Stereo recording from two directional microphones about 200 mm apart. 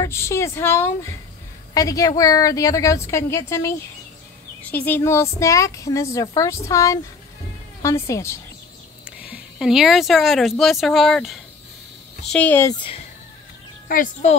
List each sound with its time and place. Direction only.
0.0 s a woman's voice: 15° left (ahead or behind)
9.2 s a woman's voice: 5° right (ahead or behind)
13.8 s speech: 40° left (ahead or behind)